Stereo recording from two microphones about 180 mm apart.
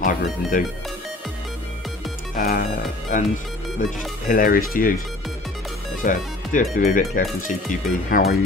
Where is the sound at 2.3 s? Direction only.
55° left (ahead or behind).